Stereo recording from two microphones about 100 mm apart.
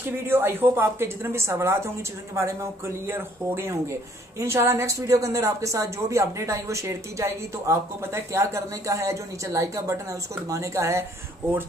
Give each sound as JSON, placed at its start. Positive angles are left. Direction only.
{"t": 0.3, "sound": "speech", "side_deg": -20}